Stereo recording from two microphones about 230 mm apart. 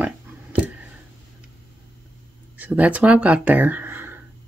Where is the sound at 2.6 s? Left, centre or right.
Centre.